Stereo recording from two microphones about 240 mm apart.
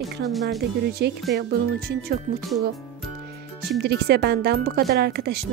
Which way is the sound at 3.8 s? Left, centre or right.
Right.